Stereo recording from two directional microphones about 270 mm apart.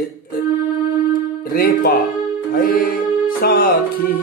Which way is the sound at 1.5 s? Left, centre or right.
Left.